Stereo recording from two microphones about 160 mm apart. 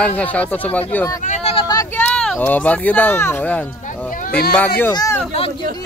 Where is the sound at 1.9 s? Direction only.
10° left (ahead or behind).